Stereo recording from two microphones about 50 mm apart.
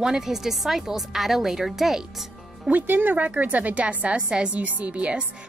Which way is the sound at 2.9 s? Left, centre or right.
Right.